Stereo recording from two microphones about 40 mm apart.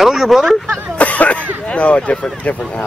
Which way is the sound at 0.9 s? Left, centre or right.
Left.